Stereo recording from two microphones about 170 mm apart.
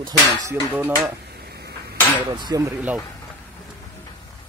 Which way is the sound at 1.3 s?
70° right (ahead or behind).